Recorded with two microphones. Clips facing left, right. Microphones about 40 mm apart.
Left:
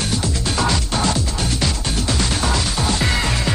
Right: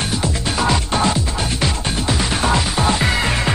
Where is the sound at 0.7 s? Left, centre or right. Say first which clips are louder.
Right 3 dB; right.